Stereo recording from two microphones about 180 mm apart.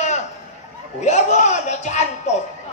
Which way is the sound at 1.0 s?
40° left (ahead or behind).